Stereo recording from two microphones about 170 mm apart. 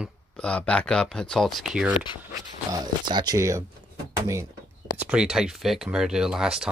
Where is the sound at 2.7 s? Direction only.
25° right (ahead or behind).